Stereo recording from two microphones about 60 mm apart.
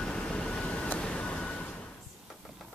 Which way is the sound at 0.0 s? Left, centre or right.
Centre.